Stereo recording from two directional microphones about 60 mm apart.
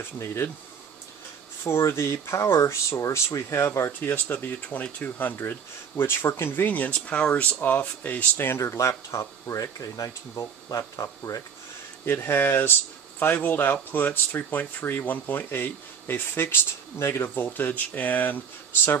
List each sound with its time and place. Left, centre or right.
0.2 s speech: left
1.6 s speech: left
2.6 s speech: left
5.4 s speech: left
6.7 s speech: left
8.5 s speech: left
10.7 s speech: left
12.0 s speech: left
17.3 s speech: left